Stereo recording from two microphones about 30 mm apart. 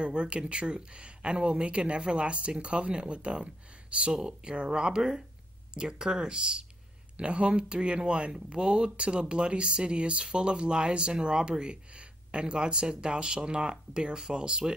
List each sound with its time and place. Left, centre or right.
0.0 s speech: right
7.2 s speech: right